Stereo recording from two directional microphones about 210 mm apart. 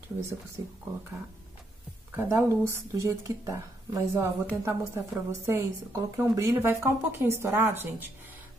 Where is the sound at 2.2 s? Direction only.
10° right (ahead or behind).